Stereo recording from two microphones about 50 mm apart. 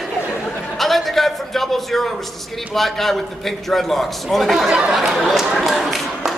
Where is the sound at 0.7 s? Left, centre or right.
Centre.